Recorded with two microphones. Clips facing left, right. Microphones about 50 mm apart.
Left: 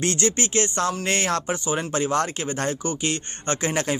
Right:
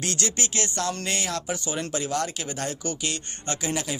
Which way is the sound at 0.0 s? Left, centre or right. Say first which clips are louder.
Left 6 dB; left.